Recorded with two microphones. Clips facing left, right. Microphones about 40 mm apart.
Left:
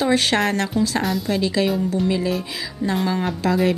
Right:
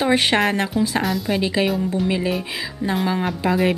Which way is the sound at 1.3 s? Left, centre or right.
Right.